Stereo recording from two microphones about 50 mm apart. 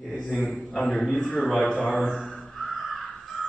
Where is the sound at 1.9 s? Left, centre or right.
Centre.